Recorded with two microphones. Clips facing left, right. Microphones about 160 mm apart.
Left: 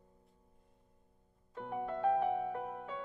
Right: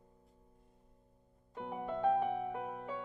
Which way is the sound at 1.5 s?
15° right (ahead or behind).